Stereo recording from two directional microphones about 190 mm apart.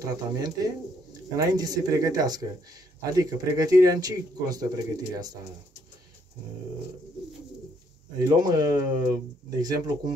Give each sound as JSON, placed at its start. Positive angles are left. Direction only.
{"t": 0.0, "sound": "speech", "side_deg": -20}
{"t": 8.2, "sound": "speech", "side_deg": -20}